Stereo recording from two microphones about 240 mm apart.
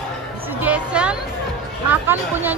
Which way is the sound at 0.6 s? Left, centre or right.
Centre.